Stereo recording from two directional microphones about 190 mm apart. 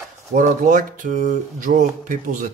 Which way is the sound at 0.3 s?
45° right (ahead or behind).